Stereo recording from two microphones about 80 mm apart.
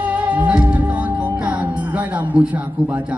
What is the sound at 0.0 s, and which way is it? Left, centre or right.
Music, centre.